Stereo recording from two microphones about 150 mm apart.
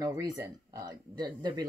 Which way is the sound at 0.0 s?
20° right (ahead or behind).